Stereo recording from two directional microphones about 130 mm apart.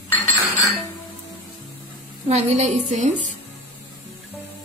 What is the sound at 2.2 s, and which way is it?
A woman's voice, 60° right (ahead or behind).